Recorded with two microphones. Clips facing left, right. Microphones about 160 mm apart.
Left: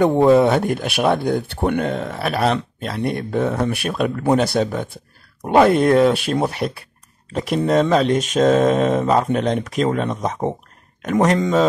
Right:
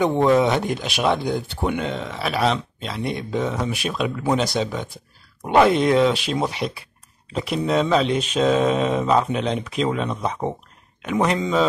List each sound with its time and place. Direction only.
0.4 s speech: 55° left (ahead or behind)